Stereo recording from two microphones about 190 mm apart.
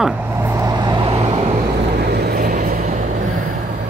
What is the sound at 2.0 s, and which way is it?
Vehicle, 55° right (ahead or behind).